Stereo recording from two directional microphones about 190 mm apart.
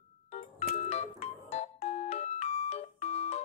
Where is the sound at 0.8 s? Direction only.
35° left (ahead or behind).